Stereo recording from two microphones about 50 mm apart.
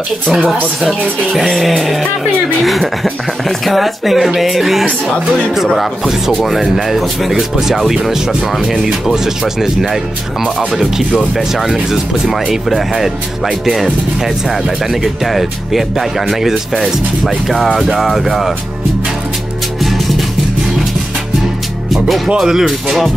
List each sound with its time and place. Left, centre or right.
1.5 s speech: centre
14.9 s speech: centre
21.9 s speech: centre